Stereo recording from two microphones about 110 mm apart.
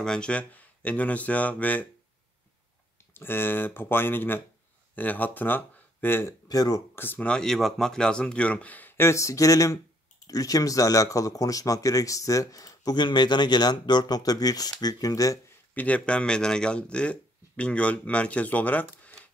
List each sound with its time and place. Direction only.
0.0 s speech: 10° left (ahead or behind)
3.2 s speech: 20° left (ahead or behind)
6.5 s speech: 35° left (ahead or behind)
7.0 s speech: 15° left (ahead or behind); by 15.3 s 35° left (ahead or behind)
15.7 s speech: 15° left (ahead or behind)